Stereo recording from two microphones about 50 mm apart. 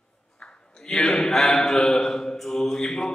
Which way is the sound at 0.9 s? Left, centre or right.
Centre.